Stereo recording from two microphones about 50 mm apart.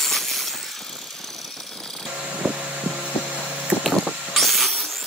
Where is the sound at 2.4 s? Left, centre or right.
Right.